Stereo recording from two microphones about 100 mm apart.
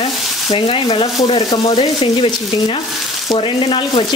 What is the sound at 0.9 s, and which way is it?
Speech, 60° left (ahead or behind).